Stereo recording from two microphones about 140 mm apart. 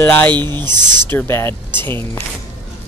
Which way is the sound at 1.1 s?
15° left (ahead or behind).